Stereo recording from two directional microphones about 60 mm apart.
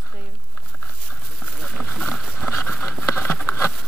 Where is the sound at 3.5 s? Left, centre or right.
Left.